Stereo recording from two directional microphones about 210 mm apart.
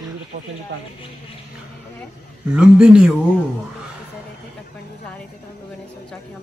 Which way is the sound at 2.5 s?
5° right (ahead or behind).